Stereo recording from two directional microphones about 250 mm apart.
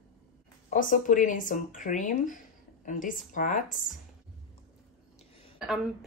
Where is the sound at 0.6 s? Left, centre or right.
Left.